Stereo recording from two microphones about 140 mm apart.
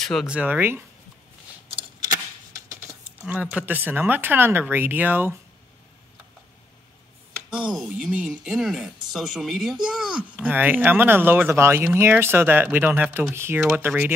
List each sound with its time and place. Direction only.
0.0 s speech: 5° left (ahead or behind)
0.3 s speech: 10° right (ahead or behind)
2.5 s speech: 20° right (ahead or behind)
7.5 s speech: 5° right (ahead or behind)